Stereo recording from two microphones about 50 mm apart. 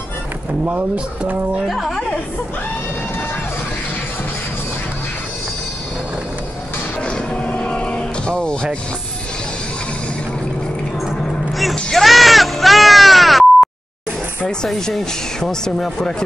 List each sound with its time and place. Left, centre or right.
0.7 s speech: right
1.7 s a woman's voice: centre
7.0 s cattle: centre
11.7 s a sound: centre
14.6 s speech: centre